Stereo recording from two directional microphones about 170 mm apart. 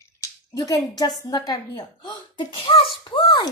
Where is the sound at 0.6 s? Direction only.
20° left (ahead or behind).